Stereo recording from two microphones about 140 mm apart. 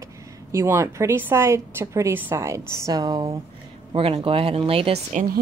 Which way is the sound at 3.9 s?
40° right (ahead or behind).